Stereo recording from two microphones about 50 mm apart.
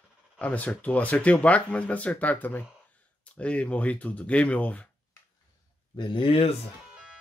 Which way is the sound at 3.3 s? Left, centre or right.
Left.